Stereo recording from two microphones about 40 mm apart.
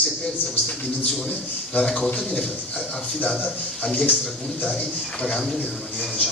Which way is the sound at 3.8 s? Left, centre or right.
Left.